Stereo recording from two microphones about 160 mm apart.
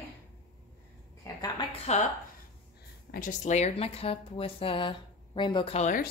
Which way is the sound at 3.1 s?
55° left (ahead or behind).